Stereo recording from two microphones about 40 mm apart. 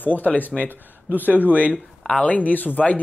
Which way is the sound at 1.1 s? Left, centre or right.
Right.